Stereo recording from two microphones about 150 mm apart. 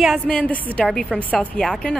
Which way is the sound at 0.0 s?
5° left (ahead or behind).